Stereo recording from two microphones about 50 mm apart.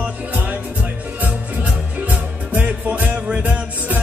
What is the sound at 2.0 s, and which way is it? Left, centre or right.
Music, right.